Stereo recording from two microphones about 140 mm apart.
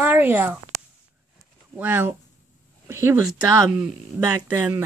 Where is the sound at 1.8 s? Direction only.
15° right (ahead or behind).